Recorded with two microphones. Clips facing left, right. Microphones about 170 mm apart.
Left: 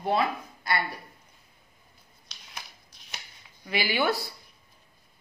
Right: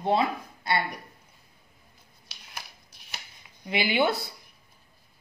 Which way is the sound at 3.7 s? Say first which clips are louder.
Right 2 dB; 20° right (ahead or behind).